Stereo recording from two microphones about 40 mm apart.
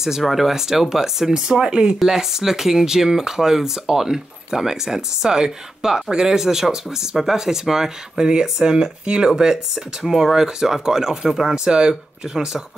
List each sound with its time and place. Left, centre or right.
0.0 s speech: centre